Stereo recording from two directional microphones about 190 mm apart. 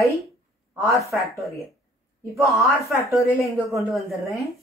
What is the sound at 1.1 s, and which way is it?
Speech, centre (ahead or behind).